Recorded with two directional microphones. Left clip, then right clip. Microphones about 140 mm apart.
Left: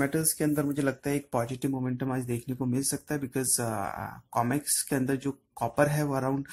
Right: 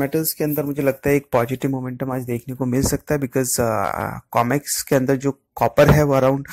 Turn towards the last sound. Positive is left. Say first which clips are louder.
# right 13 dB
turn(degrees=-50)  # may be behind; listen again after turning